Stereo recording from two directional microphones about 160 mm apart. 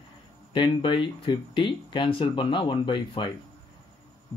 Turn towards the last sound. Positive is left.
turn(degrees=30)  # may be behind; listen again after turning